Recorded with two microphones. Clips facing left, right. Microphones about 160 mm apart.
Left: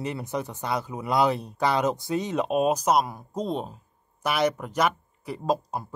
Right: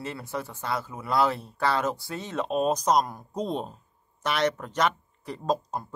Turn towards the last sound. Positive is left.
turn(degrees=10)  # may be behind; listen again after turning